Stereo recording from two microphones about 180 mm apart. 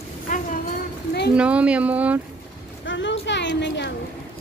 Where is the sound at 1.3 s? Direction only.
5° right (ahead or behind).